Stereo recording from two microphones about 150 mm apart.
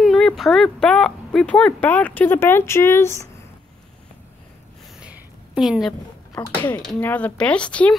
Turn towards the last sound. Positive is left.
turn(degrees=10)  # may be behind; listen again after turning